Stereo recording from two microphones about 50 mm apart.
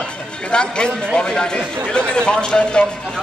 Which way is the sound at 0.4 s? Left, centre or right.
Centre.